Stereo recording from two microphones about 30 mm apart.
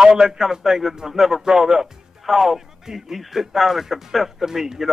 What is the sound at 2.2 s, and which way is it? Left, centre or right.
Speech, centre.